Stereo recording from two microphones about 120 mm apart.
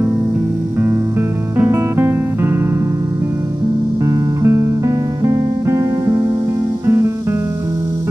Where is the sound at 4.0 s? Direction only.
30° right (ahead or behind).